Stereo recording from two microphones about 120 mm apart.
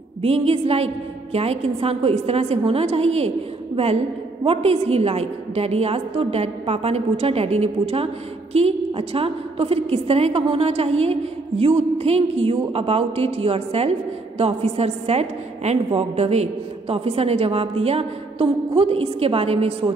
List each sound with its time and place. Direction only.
0.2 s a woman's voice: 55° right (ahead or behind)